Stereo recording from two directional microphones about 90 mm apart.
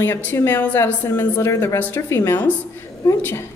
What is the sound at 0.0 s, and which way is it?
A woman's voice, 25° left (ahead or behind).